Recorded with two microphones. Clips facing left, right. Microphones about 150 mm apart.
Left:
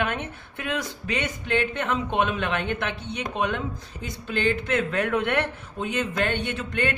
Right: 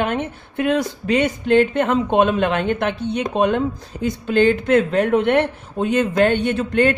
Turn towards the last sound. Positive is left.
turn(degrees=-40)  # may be behind; listen again after turning